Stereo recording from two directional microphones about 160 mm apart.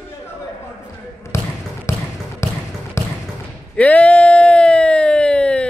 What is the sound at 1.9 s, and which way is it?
Basketball bounce, 15° left (ahead or behind).